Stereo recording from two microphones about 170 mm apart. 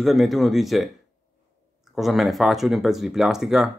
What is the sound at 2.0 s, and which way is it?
Speech, centre (ahead or behind).